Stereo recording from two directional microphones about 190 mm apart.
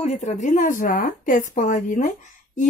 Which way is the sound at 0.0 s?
40° left (ahead or behind).